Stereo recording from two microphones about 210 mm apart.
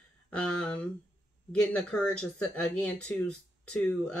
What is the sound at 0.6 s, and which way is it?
Speech, 5° left (ahead or behind).